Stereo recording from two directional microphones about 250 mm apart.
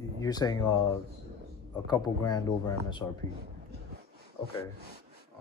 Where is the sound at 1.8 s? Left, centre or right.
Centre.